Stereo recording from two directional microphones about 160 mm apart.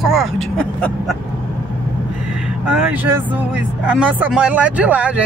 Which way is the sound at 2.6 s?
10° right (ahead or behind).